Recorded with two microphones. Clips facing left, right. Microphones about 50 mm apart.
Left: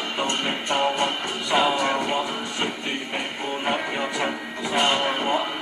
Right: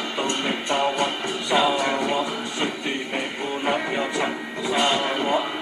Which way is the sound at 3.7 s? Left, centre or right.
Centre.